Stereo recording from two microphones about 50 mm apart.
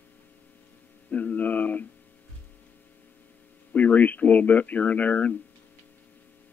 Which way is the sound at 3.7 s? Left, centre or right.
Left.